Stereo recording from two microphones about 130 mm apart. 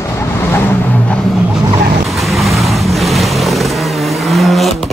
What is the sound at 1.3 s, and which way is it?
Vehicle, 5° right (ahead or behind).